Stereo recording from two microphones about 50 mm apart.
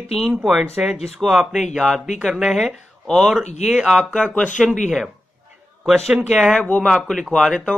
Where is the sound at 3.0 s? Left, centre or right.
Centre.